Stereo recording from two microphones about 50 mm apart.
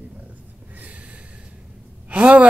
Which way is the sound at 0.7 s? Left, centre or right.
Right.